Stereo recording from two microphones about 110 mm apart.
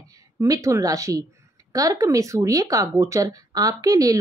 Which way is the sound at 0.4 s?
30° right (ahead or behind).